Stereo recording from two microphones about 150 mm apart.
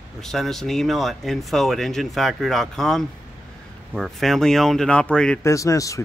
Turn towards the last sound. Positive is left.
turn(degrees=20)  # may be behind; listen again after turning